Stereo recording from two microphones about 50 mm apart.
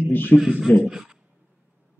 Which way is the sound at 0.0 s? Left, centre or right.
Left.